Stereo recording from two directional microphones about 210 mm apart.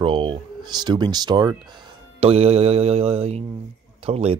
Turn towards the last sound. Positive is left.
turn(degrees=-30)  # may be behind; listen again after turning